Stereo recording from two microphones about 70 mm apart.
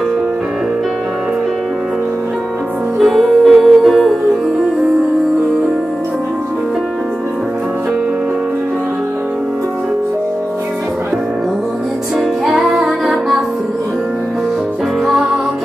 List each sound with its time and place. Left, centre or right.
3.0 s music: centre
12.4 s music: centre